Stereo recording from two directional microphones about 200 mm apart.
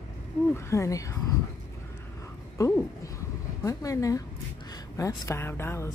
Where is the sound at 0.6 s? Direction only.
15° left (ahead or behind).